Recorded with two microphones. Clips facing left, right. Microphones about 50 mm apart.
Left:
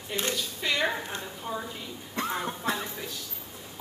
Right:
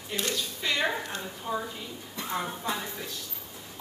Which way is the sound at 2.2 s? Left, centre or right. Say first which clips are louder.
Left 7 dB; left.